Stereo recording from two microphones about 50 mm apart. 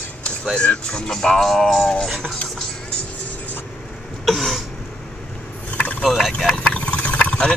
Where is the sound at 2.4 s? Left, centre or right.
Centre.